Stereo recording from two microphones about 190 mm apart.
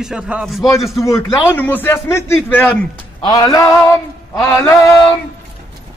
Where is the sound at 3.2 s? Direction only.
20° left (ahead or behind).